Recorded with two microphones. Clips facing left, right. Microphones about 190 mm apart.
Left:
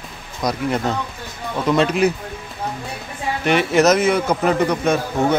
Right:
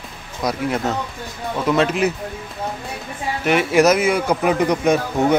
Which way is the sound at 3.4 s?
5° right (ahead or behind).